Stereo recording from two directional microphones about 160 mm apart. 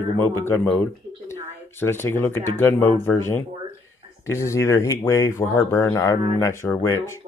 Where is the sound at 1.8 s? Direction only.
15° left (ahead or behind).